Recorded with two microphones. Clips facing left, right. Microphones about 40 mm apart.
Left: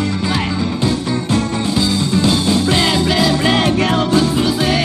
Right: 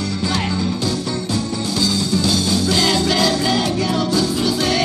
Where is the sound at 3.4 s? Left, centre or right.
Left.